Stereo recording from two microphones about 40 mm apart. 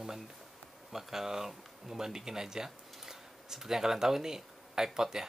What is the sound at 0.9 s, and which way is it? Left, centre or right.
Speech, centre.